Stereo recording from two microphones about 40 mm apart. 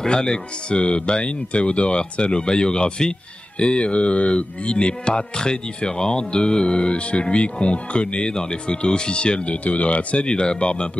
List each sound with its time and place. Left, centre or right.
0.0 s speech: centre